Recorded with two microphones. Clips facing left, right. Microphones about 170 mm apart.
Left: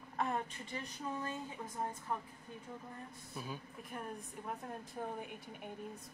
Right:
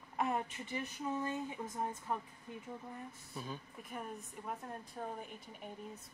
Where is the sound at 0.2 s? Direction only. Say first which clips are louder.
Right 1 dB; 15° right (ahead or behind).